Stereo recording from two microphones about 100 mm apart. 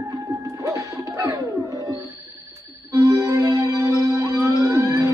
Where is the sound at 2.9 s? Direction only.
30° right (ahead or behind).